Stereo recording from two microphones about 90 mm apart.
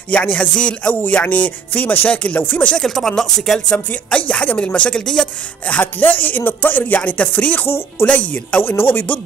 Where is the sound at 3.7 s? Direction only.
15° left (ahead or behind).